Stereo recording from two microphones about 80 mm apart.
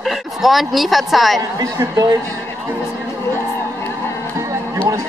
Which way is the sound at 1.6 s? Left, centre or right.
Right.